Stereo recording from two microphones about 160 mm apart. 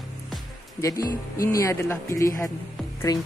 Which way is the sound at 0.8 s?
20° left (ahead or behind).